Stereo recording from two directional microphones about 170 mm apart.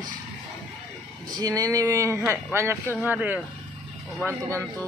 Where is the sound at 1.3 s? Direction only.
20° right (ahead or behind).